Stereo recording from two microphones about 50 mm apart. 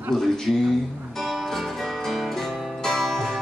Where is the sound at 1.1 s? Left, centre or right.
Centre.